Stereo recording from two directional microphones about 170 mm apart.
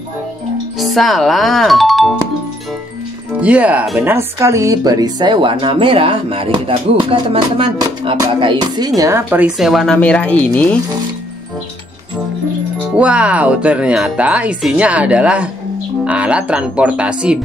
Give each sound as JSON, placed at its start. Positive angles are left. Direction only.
{"t": 0.7, "sound": "speech", "side_deg": 0}
{"t": 3.3, "sound": "speech", "side_deg": -5}
{"t": 12.9, "sound": "speech", "side_deg": -5}